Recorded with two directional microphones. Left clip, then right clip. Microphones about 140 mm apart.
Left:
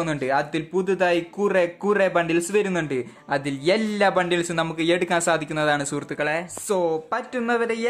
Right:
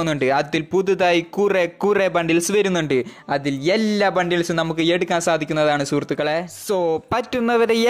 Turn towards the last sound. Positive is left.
turn(degrees=-65)  # may be behind; listen again after turning